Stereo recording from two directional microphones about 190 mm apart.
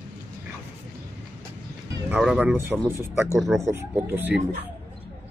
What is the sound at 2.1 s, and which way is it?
Speech, 5° right (ahead or behind).